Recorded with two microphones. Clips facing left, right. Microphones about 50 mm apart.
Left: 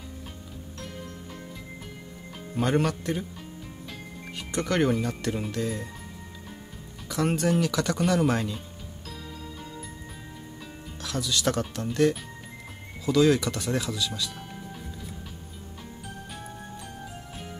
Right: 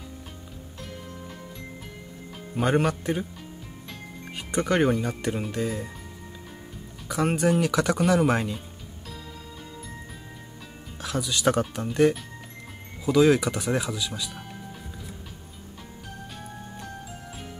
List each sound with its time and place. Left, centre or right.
2.5 s speech: centre
4.4 s speech: centre
7.1 s speech: centre
11.0 s speech: centre